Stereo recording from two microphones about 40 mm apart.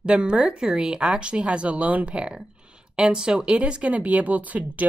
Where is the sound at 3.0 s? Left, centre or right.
Right.